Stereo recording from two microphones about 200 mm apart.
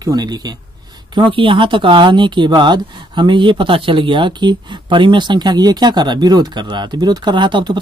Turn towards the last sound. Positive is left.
turn(degrees=-25)  # may be behind; listen again after turning